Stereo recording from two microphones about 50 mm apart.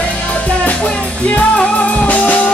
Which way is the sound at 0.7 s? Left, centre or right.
Left.